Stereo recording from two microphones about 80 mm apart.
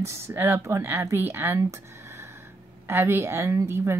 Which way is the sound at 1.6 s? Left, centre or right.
Right.